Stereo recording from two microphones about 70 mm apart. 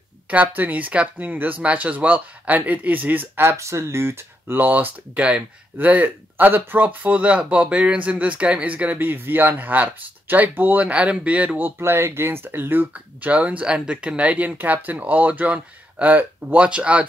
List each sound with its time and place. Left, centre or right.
0.3 s speech: right
12.9 s speech: right